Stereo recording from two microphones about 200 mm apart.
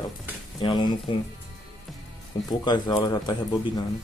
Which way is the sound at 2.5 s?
20° left (ahead or behind).